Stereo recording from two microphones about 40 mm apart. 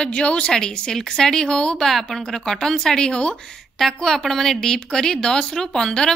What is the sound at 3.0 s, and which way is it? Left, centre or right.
Speech, left.